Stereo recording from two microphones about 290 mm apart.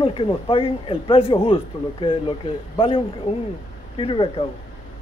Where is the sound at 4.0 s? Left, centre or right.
Centre.